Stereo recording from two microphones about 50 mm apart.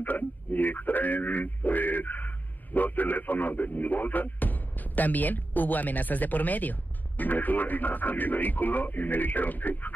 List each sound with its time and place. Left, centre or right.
0.0 s speech: left